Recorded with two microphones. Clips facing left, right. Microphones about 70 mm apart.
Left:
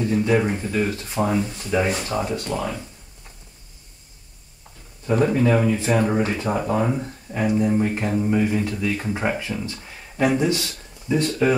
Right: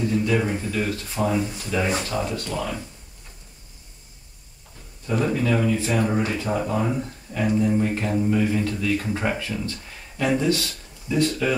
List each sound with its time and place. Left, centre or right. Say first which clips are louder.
0.0 s speech: left 2 dB; left
5.0 s speech: left 4 dB; left